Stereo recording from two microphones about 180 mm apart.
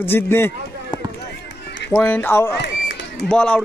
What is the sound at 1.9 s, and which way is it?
Speech, 10° left (ahead or behind).